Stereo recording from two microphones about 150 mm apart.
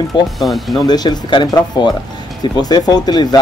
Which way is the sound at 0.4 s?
Centre (ahead or behind).